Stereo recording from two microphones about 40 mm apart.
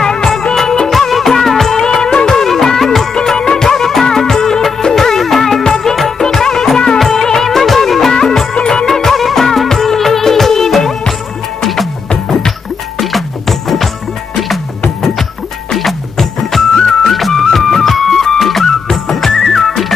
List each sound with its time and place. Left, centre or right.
0.6 s music: centre
3.2 s music: centre
7.0 s music of bollywood: centre
8.1 s music: centre
15.7 s music: centre